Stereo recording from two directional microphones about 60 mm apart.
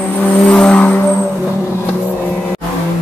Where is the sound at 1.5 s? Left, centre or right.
Left.